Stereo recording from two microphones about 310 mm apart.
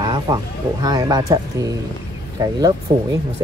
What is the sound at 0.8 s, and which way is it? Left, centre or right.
Speech, centre.